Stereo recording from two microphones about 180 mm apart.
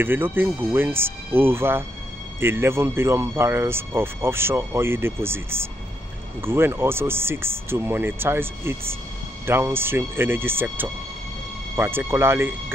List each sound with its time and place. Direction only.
0.0 s speech: 10° right (ahead or behind)